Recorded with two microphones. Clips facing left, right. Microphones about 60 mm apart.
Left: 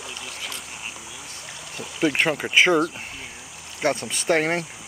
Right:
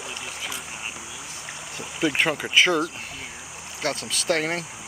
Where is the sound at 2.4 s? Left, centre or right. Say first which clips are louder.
Left 3 dB; centre.